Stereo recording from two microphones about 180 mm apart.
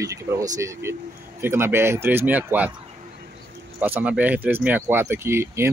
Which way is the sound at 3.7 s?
10° right (ahead or behind).